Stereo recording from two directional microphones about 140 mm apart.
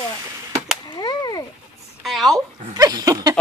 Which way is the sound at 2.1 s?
Centre (ahead or behind).